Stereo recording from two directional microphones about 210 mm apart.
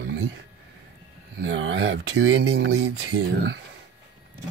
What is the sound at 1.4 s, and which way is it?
Speech, 65° right (ahead or behind).